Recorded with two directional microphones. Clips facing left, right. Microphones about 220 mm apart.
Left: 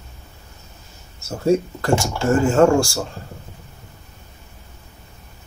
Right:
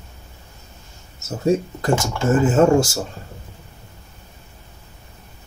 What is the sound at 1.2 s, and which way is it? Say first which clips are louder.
Speech: left 1 dB; 20° right (ahead or behind).